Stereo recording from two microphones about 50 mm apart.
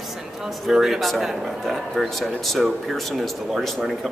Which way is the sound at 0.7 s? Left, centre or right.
Centre.